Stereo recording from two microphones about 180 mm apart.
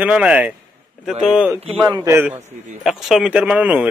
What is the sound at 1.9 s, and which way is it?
Speech, 15° right (ahead or behind).